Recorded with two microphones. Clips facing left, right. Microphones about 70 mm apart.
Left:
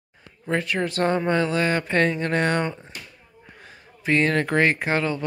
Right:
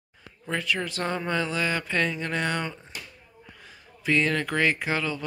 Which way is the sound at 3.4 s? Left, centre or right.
Left.